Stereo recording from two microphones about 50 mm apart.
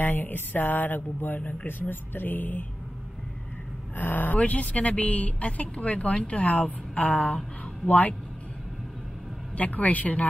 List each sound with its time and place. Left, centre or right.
0.0 s speech: left
3.9 s speech: left
4.4 s speech: left
9.6 s speech: left